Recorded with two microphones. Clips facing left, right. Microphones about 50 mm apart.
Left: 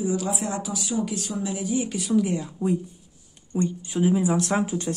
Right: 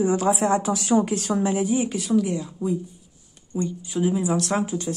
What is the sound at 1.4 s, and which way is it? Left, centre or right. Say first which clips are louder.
Speech: right 3 dB; right.